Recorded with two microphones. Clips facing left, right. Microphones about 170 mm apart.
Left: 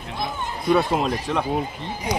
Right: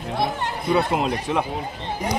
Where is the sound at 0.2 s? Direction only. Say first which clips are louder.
Right 4 dB; 65° right (ahead or behind).